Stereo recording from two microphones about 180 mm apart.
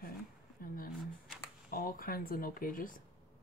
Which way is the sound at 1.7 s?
50° left (ahead or behind).